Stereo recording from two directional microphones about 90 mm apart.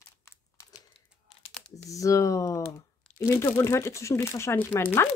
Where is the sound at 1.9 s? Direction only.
35° left (ahead or behind).